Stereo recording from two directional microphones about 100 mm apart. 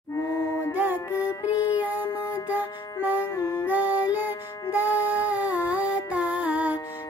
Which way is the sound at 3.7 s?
15° right (ahead or behind).